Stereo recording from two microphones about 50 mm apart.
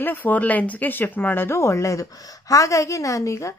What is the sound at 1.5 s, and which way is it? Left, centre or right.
A woman's voice, left.